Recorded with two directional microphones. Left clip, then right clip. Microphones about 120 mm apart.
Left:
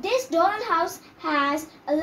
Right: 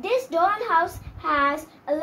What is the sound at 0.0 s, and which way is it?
A woman's voice, 15° right (ahead or behind).